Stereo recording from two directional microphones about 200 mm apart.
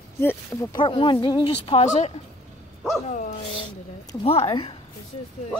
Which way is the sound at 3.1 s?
40° left (ahead or behind).